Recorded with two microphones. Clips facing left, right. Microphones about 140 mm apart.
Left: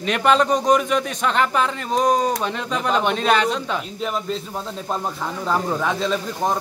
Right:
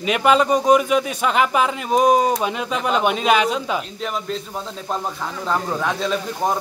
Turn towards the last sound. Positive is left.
turn(degrees=0)  # may be behind; listen again after turning